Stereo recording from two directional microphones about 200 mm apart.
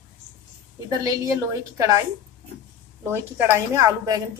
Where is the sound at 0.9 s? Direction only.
15° right (ahead or behind).